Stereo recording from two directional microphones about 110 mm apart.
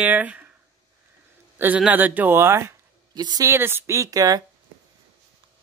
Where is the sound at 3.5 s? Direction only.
20° right (ahead or behind).